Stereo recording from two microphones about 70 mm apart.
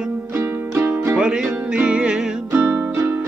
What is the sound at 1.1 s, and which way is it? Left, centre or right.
Music, centre.